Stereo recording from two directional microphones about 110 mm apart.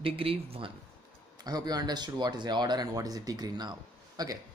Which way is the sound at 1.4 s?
35° right (ahead or behind).